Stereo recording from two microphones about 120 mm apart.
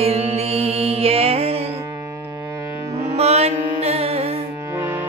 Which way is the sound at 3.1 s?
60° right (ahead or behind).